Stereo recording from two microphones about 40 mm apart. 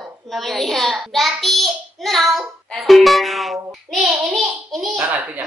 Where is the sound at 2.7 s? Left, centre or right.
Centre.